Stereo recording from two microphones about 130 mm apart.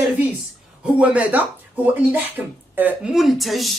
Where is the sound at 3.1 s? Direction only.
Centre (ahead or behind).